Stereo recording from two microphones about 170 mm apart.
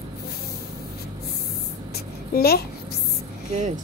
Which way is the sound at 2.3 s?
70° left (ahead or behind).